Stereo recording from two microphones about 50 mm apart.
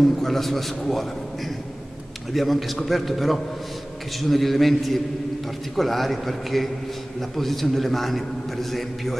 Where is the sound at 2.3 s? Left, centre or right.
Centre.